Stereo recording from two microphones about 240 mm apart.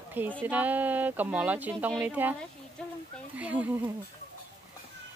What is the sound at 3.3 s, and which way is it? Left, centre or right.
Speech, centre.